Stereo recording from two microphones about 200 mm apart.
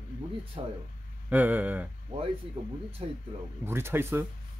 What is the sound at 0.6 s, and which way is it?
Speech, 25° right (ahead or behind).